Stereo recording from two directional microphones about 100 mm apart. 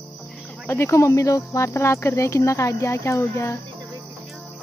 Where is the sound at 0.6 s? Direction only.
25° left (ahead or behind).